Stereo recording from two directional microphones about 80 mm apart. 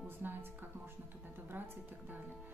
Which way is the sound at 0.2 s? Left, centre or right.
Right.